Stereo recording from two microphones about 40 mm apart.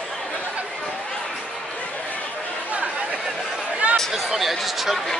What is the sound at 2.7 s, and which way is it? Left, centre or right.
Chatter, right.